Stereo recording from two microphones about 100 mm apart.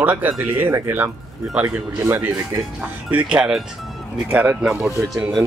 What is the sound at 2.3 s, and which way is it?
Speech, 10° right (ahead or behind).